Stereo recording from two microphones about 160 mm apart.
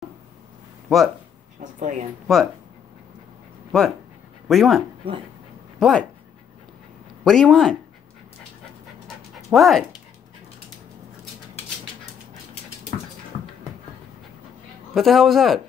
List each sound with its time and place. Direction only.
0.8 s speech: centre (ahead or behind)
1.6 s a sound: 50° right (ahead or behind)
2.3 s a man's voice: centre (ahead or behind)
4.5 s a man's voice: centre (ahead or behind)
7.2 s a man's voice: 5° left (ahead or behind)
9.0 s dog: centre (ahead or behind)
15.0 s a man's voice: centre (ahead or behind)